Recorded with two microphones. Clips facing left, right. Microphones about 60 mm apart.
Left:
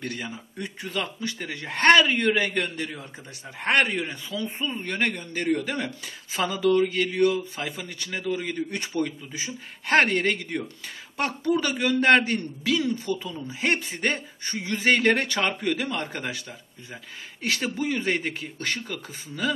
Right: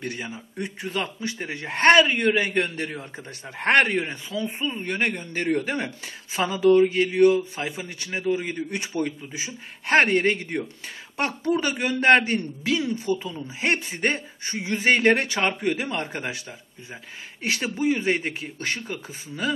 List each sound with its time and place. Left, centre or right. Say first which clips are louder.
0.0 s speech: right 1 dB; centre
3.5 s speech: right 3 dB; right
4.0 s speech: right 2 dB; right
4.5 s speech: right 2 dB; centre; by 5.9 s right
6.3 s a man's voice: right 4 dB; right
17.4 s a man's voice: right 1 dB; centre